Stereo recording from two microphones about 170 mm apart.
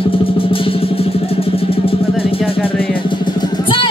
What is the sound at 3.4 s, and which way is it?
Music, 30° left (ahead or behind).